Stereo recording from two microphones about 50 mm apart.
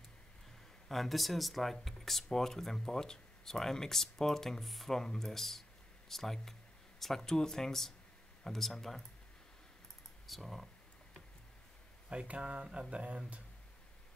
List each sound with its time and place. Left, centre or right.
0.8 s speech: centre
10.2 s speech: centre
12.1 s speech: right